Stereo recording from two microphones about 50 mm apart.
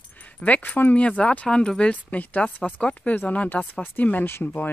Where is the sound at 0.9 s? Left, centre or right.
Left.